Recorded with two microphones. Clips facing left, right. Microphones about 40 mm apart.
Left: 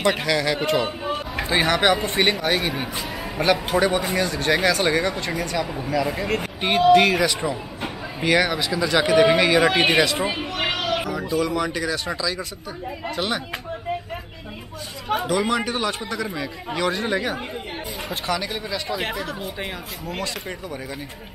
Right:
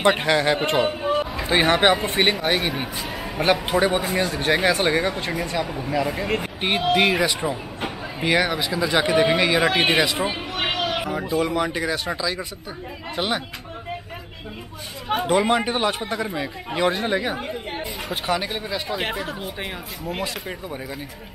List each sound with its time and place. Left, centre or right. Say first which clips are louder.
0.0 s a man's voice: right 2 dB; right
2.1 s speech: even; centre
4.2 s speech: even; centre
10.6 s a sound: even; right
11.1 s a man's voice: even; right
15.0 s a man's voice: right 2 dB; right
18.1 s a man's voice: right 1 dB; right
18.9 s speech: even; centre
19.1 s a man's voice: even; right